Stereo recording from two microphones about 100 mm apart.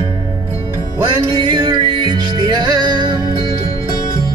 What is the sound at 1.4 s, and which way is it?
Music, 50° right (ahead or behind).